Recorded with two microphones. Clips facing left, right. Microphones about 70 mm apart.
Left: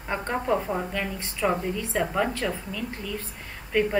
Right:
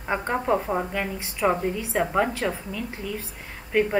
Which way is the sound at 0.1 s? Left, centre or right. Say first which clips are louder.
Right 2 dB; centre.